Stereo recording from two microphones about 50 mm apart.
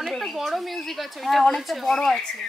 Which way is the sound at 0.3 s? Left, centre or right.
Centre.